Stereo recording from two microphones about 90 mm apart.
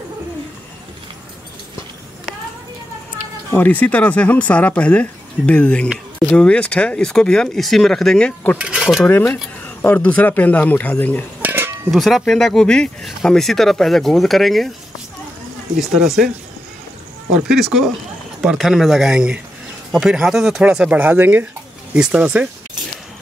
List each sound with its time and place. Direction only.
3.5 s speech: 20° left (ahead or behind)
8.5 s speech: 5° right (ahead or behind)
9.0 s speech: 20° left (ahead or behind)
11.4 s a sound: 25° right (ahead or behind)
11.9 s speech: centre (ahead or behind)
15.8 s speech: 5° right (ahead or behind)
17.3 s speech: 10° right (ahead or behind)